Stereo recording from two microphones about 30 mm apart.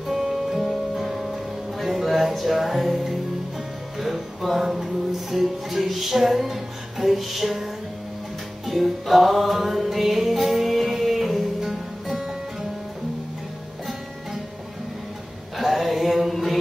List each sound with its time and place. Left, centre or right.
0.0 s music: centre
8.6 s music: centre
15.5 s mantra: centre